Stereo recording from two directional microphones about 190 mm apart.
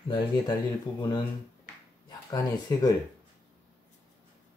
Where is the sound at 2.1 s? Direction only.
20° left (ahead or behind).